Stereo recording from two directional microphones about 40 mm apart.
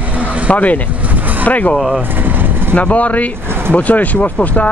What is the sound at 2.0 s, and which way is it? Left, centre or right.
Vehicle, right.